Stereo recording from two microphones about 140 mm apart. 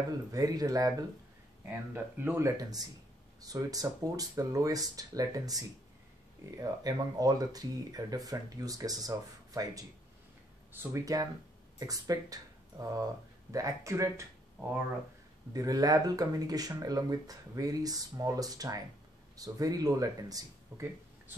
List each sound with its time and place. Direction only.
0.3 s speech: 25° right (ahead or behind)
15.5 s speech: 25° right (ahead or behind)